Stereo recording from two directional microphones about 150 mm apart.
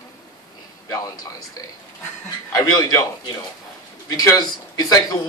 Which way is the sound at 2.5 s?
25° left (ahead or behind).